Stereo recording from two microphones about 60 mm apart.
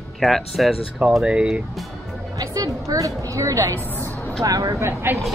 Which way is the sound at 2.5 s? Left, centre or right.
Right.